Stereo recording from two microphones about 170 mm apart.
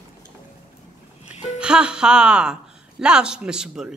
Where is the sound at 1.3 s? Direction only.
40° left (ahead or behind).